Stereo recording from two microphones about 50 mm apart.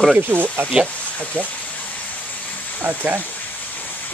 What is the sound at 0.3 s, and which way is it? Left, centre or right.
Speech, right.